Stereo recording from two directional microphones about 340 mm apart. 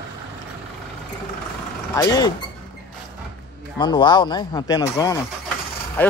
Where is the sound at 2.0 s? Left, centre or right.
Centre.